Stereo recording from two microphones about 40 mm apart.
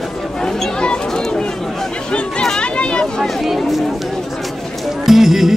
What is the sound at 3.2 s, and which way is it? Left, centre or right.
Speech, centre.